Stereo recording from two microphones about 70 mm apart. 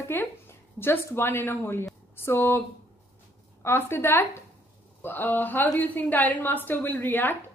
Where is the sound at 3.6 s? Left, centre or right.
Left.